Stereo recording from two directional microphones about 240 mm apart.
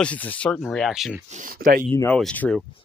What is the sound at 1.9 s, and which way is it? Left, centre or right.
Speech, centre.